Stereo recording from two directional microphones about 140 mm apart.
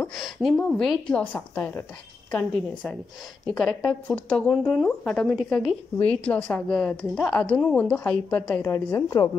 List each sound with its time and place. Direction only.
0.0 s a woman's voice: centre (ahead or behind)
3.4 s a woman's voice: 5° left (ahead or behind)
8.6 s a woman's voice: 20° left (ahead or behind)